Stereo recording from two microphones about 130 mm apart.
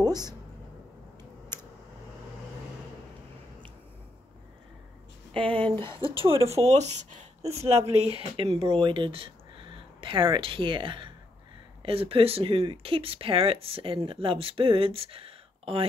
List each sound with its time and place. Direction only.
0.0 s a sound: 30° right (ahead or behind)
5.3 s speech: 40° right (ahead or behind)
6.4 s speech: 55° right (ahead or behind)